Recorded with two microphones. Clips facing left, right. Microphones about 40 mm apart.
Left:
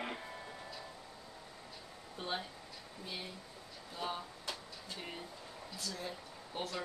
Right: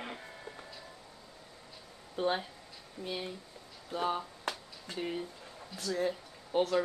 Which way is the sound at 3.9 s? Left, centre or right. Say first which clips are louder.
Right 8 dB; right.